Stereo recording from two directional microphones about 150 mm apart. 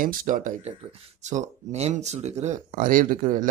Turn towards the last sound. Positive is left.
turn(degrees=-60)  # may be behind; listen again after turning